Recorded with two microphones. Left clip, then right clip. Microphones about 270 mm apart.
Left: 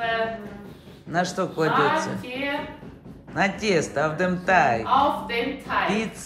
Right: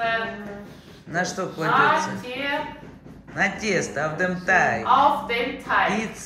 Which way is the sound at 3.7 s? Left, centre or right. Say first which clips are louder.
Left 1 dB; centre.